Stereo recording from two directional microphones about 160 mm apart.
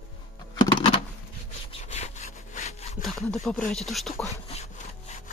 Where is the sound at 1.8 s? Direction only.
45° left (ahead or behind).